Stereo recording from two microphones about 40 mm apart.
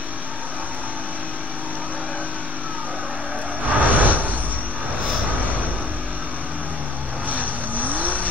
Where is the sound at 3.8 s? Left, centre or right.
Right.